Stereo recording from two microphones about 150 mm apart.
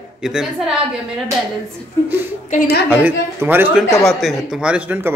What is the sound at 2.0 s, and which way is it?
Speech, 15° right (ahead or behind).